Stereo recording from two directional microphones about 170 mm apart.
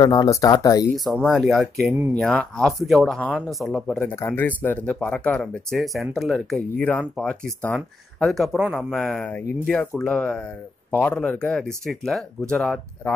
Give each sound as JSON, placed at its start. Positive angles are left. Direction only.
{"t": 0.0, "sound": "speech", "side_deg": 25}
{"t": 0.9, "sound": "speech", "side_deg": 0}